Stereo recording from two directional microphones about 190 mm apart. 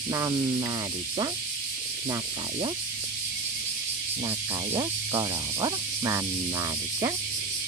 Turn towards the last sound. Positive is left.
turn(degrees=-20)  # may be behind; listen again after turning